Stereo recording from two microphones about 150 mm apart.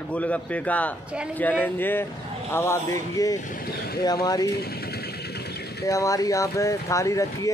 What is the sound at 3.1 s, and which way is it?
Speech, 25° left (ahead or behind).